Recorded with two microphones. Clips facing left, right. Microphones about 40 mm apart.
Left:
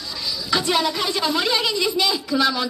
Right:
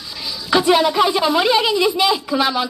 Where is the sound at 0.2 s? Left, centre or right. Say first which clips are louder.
Right 6 dB; centre.